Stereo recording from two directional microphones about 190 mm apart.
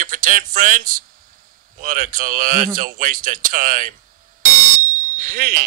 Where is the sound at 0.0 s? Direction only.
45° right (ahead or behind).